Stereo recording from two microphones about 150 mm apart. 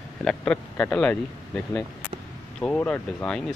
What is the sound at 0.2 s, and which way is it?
Speech, 5° left (ahead or behind).